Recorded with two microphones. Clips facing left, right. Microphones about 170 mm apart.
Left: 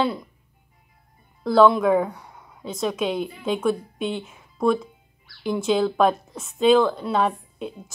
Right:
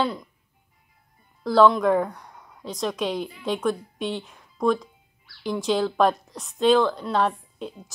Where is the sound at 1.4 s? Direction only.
Centre (ahead or behind).